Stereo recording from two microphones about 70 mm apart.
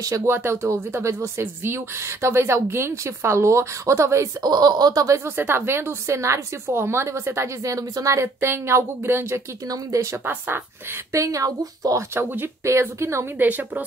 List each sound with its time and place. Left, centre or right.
0.0 s speech: right
0.3 s a woman's voice: right
4.4 s speech: right
5.0 s speech: right
5.4 s a woman's voice: right
9.9 s speech: right
11.1 s speech: right
12.2 s speech: right
13.4 s a woman's voice: right